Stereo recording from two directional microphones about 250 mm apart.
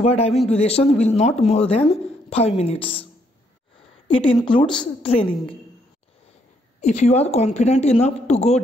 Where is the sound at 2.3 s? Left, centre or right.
Left.